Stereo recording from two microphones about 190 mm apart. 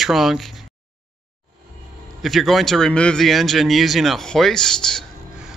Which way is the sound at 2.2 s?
Centre (ahead or behind).